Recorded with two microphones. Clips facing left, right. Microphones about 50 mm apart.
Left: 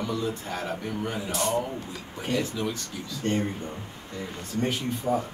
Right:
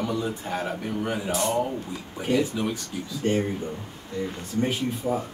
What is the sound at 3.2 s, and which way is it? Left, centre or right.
Speech, centre.